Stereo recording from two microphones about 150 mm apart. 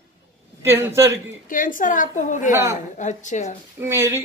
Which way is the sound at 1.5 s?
65° left (ahead or behind).